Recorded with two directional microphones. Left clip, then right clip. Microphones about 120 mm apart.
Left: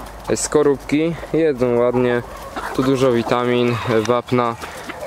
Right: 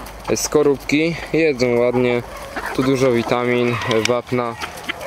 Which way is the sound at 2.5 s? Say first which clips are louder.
Even; 5° left (ahead or behind).